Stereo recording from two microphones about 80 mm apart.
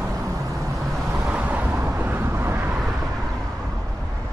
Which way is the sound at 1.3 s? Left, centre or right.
Centre.